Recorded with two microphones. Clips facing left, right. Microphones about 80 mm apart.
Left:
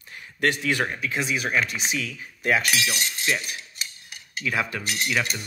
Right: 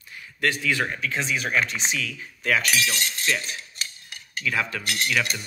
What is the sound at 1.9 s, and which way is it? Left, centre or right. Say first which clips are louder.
Speech: even; left.